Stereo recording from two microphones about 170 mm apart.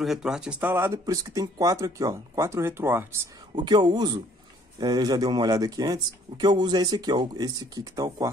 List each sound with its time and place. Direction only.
0.0 s speech: centre (ahead or behind)
3.6 s speech: 25° right (ahead or behind)